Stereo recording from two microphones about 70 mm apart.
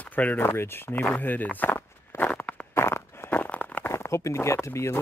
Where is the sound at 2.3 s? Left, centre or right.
Centre.